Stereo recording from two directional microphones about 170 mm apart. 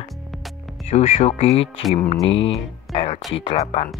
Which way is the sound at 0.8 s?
40° left (ahead or behind).